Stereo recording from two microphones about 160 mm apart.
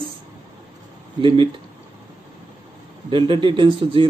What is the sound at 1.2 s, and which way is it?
Speech, 30° right (ahead or behind).